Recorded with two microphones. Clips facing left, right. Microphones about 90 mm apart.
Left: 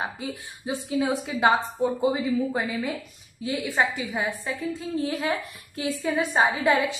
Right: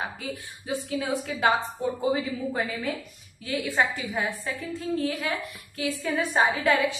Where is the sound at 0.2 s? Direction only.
20° left (ahead or behind).